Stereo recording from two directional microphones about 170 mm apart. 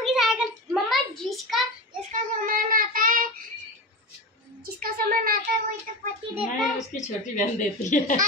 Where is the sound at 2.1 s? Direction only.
55° right (ahead or behind).